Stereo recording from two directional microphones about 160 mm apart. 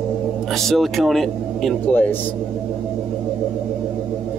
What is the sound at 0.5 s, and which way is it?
Speech, centre (ahead or behind).